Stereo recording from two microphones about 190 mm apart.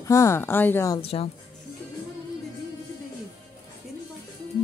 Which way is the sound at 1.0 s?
30° left (ahead or behind).